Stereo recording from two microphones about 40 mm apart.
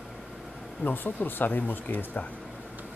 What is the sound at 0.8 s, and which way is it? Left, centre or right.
Speech, left.